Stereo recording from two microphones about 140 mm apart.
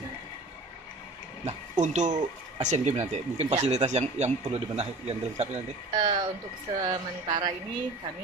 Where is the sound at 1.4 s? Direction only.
55° right (ahead or behind).